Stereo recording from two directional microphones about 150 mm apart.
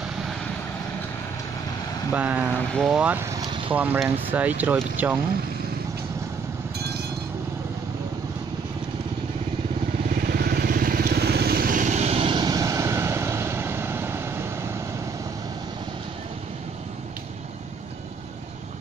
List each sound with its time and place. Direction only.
2.1 s speech: 10° right (ahead or behind)
2.5 s speech: 5° left (ahead or behind)
3.3 s vehicle: 35° right (ahead or behind)
3.7 s speech: 10° right (ahead or behind)
10.0 s vehicle: 75° right (ahead or behind); by 14.5 s 15° right (ahead or behind)